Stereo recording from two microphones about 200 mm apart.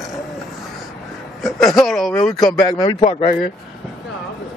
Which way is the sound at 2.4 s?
20° left (ahead or behind).